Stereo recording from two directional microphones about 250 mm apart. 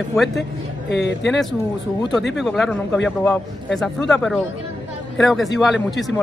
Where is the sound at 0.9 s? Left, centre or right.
Left.